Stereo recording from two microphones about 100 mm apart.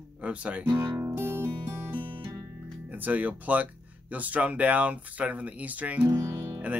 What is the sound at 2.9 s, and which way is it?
Speech, 15° right (ahead or behind).